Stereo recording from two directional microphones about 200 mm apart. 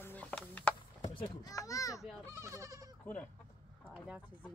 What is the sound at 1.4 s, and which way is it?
Children playing, 15° left (ahead or behind).